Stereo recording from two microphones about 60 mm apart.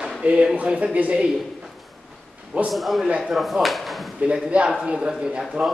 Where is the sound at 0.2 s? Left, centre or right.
Centre.